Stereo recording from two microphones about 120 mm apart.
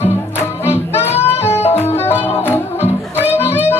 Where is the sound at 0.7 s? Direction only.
20° left (ahead or behind).